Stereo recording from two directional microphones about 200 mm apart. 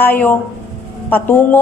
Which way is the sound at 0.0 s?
10° left (ahead or behind).